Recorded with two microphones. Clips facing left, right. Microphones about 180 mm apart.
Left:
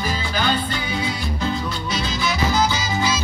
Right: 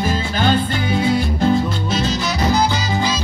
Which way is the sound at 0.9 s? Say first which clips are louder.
Right 11 dB; 50° right (ahead or behind).